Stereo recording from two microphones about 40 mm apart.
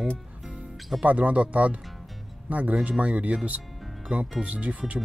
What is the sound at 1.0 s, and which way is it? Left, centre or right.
Speech, right.